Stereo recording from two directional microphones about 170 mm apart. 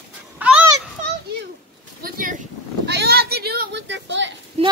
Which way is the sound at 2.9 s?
70° right (ahead or behind).